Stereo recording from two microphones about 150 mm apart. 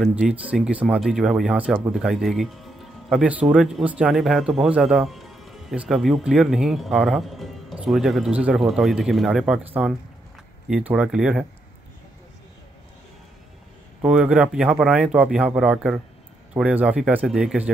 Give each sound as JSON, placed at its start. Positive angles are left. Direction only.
{"t": 0.0, "sound": "speech", "side_deg": -5}
{"t": 14.0, "sound": "speech", "side_deg": -5}